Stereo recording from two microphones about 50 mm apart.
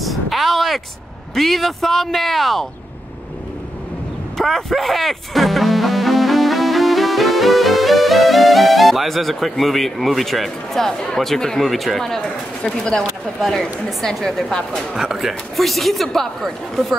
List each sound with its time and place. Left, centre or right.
0.0 s a sound: centre
1.3 s speech: centre
4.4 s speech: centre
12.6 s a woman's voice: centre
14.0 s a woman's voice: centre
15.0 s speech: centre